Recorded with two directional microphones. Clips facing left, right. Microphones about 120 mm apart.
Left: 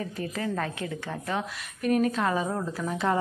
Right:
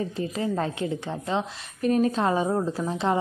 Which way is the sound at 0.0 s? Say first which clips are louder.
Right 4 dB; 25° right (ahead or behind).